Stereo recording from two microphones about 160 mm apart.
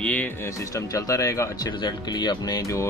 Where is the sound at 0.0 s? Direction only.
10° left (ahead or behind).